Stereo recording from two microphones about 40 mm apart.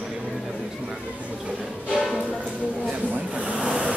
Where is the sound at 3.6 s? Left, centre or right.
Right.